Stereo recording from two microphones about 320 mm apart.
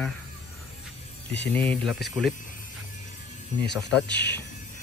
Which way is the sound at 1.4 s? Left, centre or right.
Centre.